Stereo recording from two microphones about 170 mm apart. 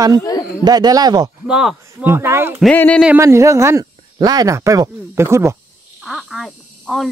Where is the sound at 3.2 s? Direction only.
15° right (ahead or behind).